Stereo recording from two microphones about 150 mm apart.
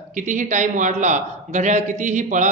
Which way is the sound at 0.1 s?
60° right (ahead or behind).